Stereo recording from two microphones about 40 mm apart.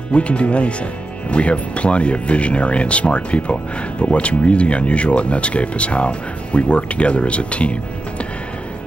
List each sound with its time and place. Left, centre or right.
0.1 s speech: left